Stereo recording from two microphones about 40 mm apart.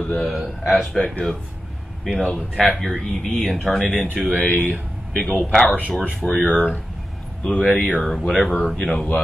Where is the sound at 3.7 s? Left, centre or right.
Centre.